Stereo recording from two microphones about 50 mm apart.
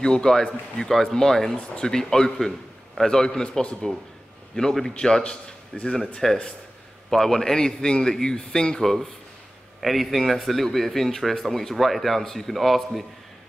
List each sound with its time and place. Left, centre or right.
0.0 s speech: centre
9.8 s a man's voice: centre